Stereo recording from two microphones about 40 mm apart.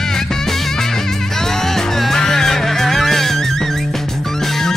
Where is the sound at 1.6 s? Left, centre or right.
Centre.